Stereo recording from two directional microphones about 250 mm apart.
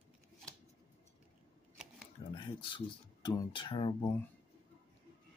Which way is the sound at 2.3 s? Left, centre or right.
Centre.